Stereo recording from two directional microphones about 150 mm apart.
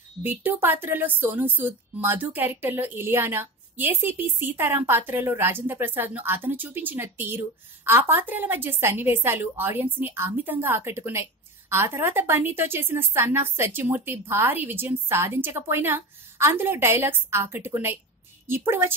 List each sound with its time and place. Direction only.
0.2 s a woman's voice: 15° right (ahead or behind)